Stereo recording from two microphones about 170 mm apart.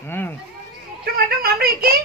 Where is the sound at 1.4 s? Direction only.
60° right (ahead or behind).